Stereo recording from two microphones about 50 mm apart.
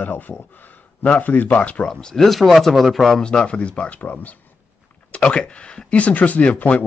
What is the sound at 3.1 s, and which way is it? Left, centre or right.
Speech, centre.